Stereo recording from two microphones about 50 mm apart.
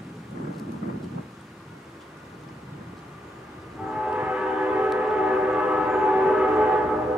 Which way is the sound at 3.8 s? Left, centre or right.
Centre.